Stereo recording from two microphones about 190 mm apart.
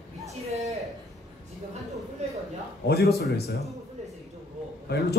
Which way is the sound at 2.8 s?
60° left (ahead or behind).